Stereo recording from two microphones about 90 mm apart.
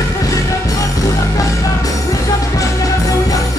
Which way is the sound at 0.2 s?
40° left (ahead or behind).